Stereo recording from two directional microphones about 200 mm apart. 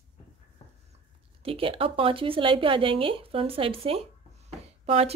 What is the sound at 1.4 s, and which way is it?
Speech, 25° right (ahead or behind).